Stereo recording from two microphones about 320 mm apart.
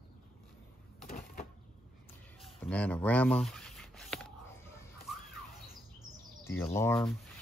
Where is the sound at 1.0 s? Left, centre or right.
Left.